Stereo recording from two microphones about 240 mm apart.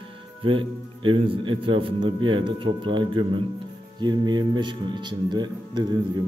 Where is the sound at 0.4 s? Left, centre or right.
Right.